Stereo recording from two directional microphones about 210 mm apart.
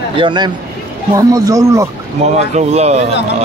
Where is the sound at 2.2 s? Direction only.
30° right (ahead or behind).